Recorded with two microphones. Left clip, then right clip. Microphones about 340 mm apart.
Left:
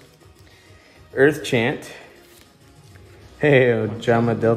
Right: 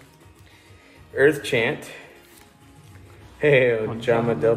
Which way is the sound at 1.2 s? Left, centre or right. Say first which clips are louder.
Left 1 dB; left.